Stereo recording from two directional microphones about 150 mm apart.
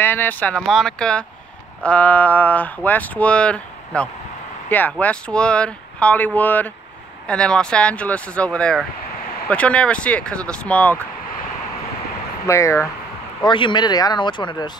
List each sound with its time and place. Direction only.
0.0 s speech: 15° left (ahead or behind)
12.4 s speech: 20° left (ahead or behind)
13.4 s speech: 30° left (ahead or behind)